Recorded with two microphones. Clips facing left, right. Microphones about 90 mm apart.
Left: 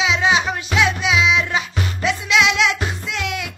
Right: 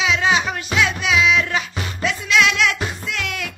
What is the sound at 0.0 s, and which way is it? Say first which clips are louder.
Music: left 1 dB; 20° left (ahead or behind).